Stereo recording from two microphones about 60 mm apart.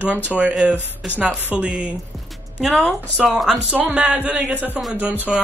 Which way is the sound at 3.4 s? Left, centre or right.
Centre.